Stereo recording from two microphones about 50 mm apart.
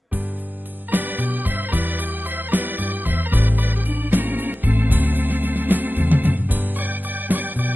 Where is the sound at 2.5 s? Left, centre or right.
Right.